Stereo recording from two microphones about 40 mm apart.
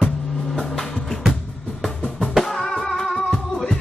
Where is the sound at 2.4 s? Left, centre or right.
Centre.